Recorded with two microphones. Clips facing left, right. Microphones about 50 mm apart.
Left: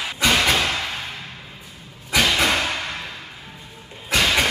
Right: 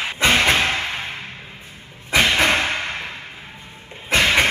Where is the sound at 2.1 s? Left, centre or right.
Right.